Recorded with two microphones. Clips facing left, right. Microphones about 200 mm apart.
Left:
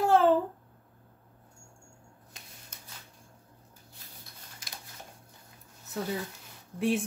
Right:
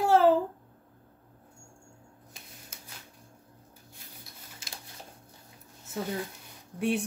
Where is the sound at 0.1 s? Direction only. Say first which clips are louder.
Right 2 dB; 5° right (ahead or behind).